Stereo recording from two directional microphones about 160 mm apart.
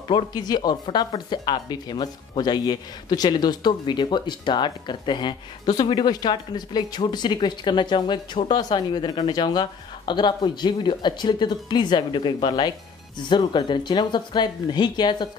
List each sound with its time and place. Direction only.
0.1 s speech: 25° left (ahead or behind)